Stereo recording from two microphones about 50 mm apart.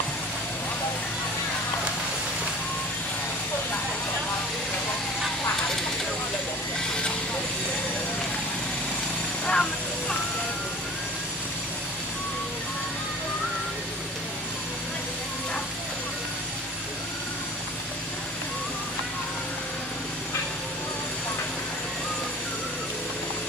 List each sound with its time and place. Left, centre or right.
9.5 s vehicle: centre